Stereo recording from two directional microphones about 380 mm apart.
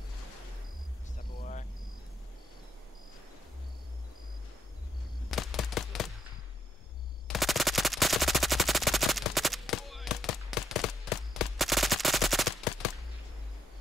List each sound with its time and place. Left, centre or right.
1.4 s cricket: centre
5.3 s a sound: centre
7.2 s machine gun: centre